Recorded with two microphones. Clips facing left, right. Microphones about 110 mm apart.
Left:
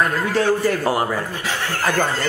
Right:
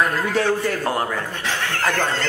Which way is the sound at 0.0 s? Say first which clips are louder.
Left 1 dB; centre (ahead or behind).